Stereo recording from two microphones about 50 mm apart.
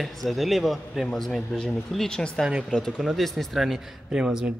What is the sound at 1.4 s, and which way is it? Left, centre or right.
Speech, centre.